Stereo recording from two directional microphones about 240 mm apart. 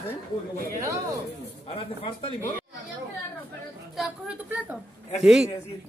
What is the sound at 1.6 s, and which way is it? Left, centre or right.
Speech, left.